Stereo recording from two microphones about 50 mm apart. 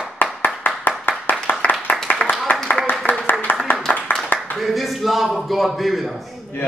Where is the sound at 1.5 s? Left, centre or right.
Left.